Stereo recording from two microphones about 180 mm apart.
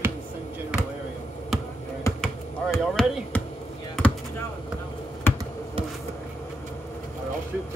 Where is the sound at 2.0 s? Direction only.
15° left (ahead or behind).